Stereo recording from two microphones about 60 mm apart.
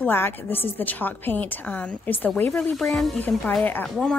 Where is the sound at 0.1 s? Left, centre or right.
Left.